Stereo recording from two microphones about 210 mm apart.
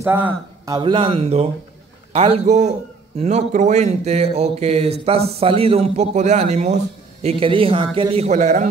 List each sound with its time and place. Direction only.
0.0 s speech: 10° right (ahead or behind); by 8.6 s 35° right (ahead or behind)